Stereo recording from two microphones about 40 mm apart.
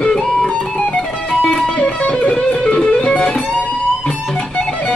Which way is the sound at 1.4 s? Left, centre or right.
Centre.